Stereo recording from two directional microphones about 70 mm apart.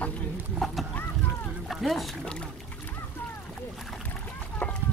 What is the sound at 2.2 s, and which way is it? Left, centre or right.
Speech, centre.